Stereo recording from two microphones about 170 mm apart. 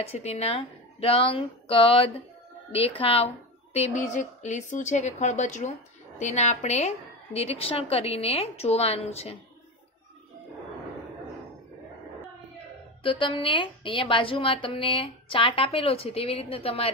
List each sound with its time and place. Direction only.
0.0 s a woman's voice: 40° left (ahead or behind)
13.0 s a woman's voice: 30° left (ahead or behind)